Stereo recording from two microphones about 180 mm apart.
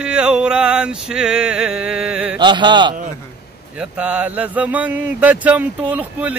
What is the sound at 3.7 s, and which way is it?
Speech, 5° right (ahead or behind).